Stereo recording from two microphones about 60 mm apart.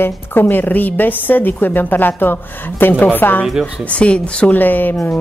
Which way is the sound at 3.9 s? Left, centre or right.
Left.